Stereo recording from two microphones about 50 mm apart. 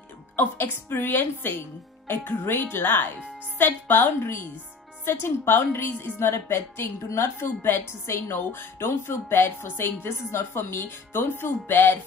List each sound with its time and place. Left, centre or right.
0.4 s speech: left
6.1 s a woman's voice: left
7.3 s speech: left